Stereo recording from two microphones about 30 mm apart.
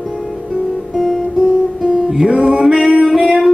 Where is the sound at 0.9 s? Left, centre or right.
Centre.